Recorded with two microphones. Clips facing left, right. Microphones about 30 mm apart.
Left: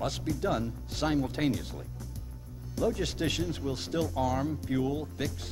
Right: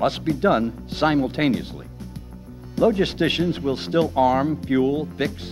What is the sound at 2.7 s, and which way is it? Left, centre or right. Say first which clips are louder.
Speech: right 11 dB; right.